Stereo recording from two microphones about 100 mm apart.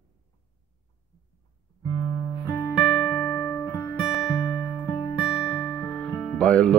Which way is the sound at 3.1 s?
20° left (ahead or behind).